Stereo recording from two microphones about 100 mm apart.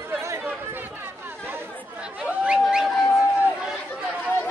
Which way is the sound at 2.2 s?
10° right (ahead or behind).